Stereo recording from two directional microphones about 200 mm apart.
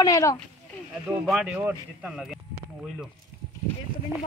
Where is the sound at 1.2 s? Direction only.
Centre (ahead or behind).